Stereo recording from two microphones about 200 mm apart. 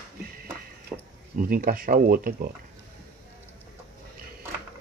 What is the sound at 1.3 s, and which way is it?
Speech, 45° right (ahead or behind).